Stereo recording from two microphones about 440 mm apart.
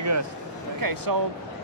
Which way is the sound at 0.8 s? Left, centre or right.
Right.